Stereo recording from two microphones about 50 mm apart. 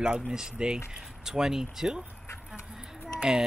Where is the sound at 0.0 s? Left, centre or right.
Centre.